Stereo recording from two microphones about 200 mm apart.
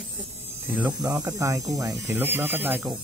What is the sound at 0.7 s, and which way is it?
Speech, 15° right (ahead or behind).